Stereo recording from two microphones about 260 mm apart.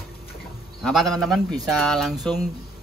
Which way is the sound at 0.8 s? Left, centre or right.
Centre.